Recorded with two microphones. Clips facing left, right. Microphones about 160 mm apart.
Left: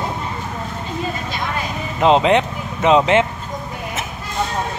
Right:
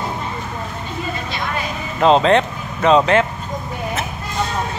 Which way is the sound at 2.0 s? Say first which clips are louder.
Right 1 dB; 15° left (ahead or behind).